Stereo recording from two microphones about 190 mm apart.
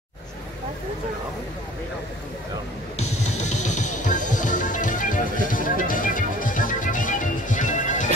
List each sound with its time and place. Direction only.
3.0 s music: 35° left (ahead or behind)